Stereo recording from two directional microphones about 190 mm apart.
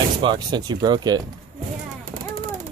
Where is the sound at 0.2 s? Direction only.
25° right (ahead or behind).